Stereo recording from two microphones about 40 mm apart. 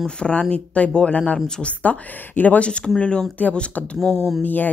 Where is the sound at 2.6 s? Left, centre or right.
Left.